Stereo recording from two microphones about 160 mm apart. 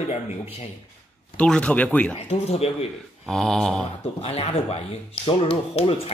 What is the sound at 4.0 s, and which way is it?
Speech, 40° left (ahead or behind).